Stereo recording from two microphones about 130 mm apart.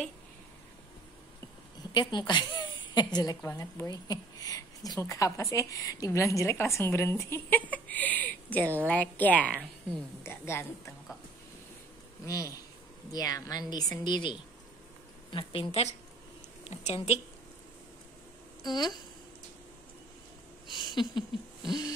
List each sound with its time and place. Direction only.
1.9 s a woman's voice: 35° left (ahead or behind); by 10.6 s 20° left (ahead or behind)
12.3 s speech: 25° left (ahead or behind)
15.3 s a woman's voice: 50° left (ahead or behind)
18.6 s a sound: 35° left (ahead or behind)
20.6 s a sound: 40° left (ahead or behind)
21.6 s owl: 35° left (ahead or behind)